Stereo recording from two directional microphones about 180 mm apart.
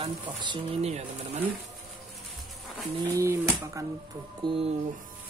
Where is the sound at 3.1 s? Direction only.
15° right (ahead or behind).